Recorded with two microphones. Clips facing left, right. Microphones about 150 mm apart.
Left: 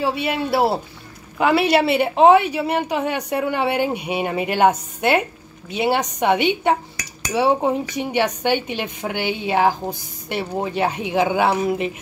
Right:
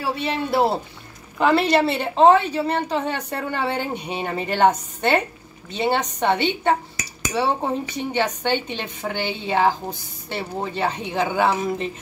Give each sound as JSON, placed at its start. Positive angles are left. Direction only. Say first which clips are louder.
{"t": 0.0, "sound": "a woman's voice", "louder": "left 3 dB", "side_deg": 10}